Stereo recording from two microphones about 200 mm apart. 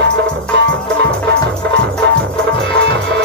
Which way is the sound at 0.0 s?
60° right (ahead or behind).